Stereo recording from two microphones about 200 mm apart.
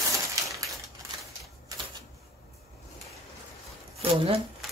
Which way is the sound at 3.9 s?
30° right (ahead or behind).